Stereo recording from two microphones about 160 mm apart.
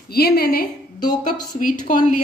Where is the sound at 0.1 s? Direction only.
75° left (ahead or behind).